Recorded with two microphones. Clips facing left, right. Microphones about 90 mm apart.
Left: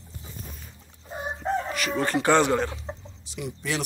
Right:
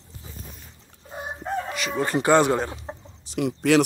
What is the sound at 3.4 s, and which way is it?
Speech, 80° right.